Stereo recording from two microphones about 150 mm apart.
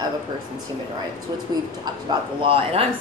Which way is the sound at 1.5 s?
30° right (ahead or behind).